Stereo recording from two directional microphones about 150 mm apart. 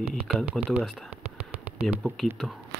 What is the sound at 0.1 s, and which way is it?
Speech, 5° left (ahead or behind).